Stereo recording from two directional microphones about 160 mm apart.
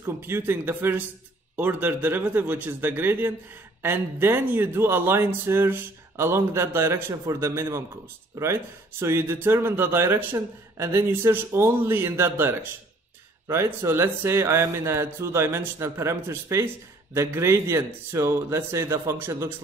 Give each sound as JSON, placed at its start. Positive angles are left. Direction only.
{"t": 0.0, "sound": "speech", "side_deg": -15}